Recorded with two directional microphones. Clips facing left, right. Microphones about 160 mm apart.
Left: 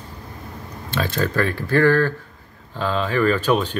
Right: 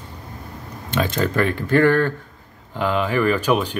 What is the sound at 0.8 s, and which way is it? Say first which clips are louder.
Speech: right 2 dB; 20° right (ahead or behind).